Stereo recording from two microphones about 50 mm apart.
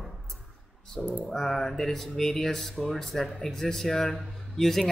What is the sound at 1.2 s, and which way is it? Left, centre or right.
Speech, centre.